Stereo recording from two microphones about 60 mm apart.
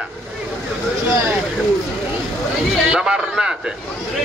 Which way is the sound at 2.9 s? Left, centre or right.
Centre.